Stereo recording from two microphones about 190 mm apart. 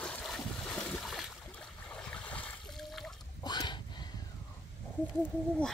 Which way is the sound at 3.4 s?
25° left (ahead or behind).